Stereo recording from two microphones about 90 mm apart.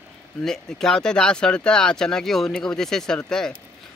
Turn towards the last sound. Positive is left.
turn(degrees=5)  # may be behind; listen again after turning